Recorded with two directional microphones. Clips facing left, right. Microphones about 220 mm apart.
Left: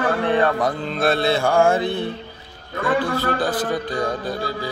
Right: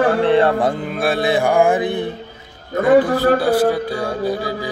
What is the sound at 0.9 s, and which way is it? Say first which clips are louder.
Mantra: left 1 dB; 10° right (ahead or behind).